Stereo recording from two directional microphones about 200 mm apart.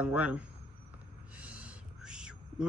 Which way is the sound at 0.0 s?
5° right (ahead or behind).